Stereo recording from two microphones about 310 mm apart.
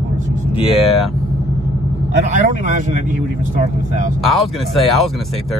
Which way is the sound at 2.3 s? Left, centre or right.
Right.